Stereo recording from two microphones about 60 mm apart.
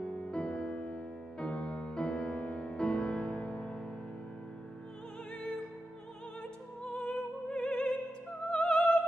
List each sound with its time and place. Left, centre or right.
0.0 s music: centre
6.9 s music: centre
8.5 s opera: centre